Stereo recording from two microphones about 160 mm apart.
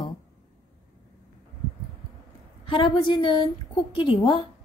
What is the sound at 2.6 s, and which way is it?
A woman's voice, 30° left (ahead or behind).